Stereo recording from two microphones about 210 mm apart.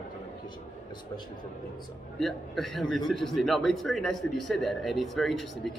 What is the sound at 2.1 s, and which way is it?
A man's voice, centre (ahead or behind).